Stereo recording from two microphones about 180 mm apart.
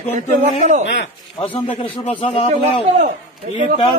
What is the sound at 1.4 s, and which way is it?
Speech, 30° left (ahead or behind).